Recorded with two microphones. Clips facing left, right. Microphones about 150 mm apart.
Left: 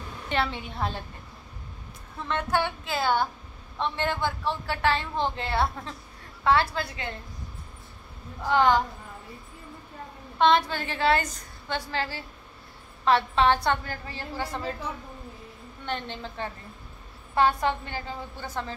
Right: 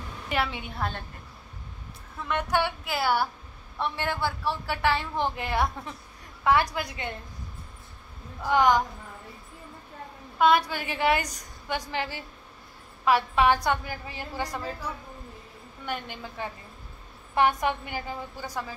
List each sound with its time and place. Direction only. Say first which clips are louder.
0.3 s a woman's voice: left 1 dB; 5° right (ahead or behind)
2.2 s a woman's voice: even; 15° right (ahead or behind)
8.5 s a woman's voice: even; 15° right (ahead or behind)
10.4 s a woman's voice: even; 10° right (ahead or behind)